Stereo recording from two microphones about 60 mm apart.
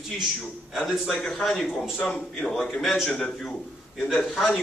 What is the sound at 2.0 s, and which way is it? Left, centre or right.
A man's voice, centre.